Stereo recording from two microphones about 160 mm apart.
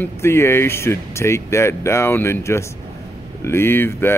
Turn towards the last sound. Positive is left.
turn(degrees=15)  # may be behind; listen again after turning